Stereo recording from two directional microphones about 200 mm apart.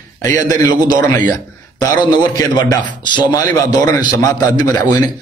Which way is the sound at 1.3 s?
15° left (ahead or behind).